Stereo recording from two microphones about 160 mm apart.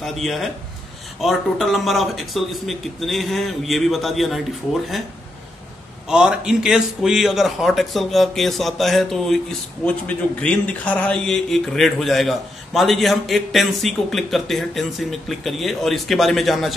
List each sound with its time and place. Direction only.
0.0 s a man's voice: centre (ahead or behind)
6.0 s a man's voice: 5° right (ahead or behind)